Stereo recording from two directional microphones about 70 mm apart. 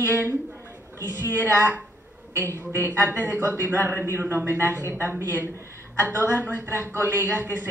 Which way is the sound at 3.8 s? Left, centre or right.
Right.